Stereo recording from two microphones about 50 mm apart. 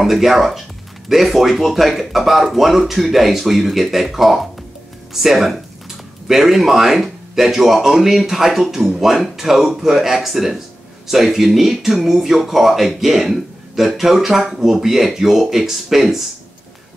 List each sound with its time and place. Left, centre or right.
0.0 s speech: centre